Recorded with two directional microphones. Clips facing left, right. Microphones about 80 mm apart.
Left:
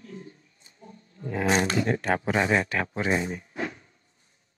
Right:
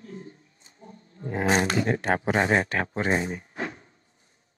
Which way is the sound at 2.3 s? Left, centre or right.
Right.